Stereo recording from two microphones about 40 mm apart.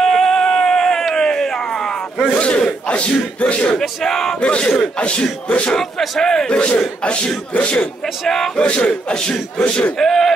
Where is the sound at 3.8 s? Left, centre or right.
Centre.